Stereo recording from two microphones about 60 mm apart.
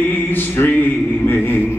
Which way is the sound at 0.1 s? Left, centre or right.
Left.